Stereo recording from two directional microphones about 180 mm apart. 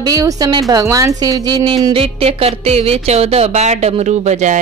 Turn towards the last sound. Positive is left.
turn(degrees=-40)  # may be behind; listen again after turning